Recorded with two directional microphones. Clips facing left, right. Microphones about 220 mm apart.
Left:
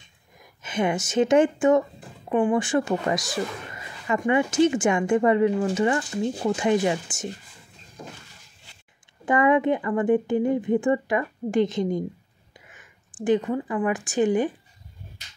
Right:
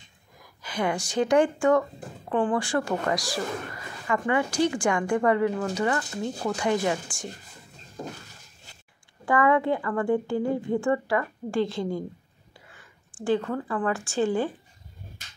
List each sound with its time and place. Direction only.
0.4 s speech: 20° left (ahead or behind)
8.0 s a sound: 45° right (ahead or behind)
9.2 s speech: 20° left (ahead or behind)